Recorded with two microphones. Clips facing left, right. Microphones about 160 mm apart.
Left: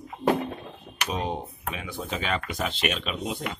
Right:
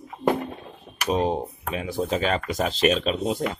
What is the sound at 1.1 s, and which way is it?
Speech, 40° right (ahead or behind).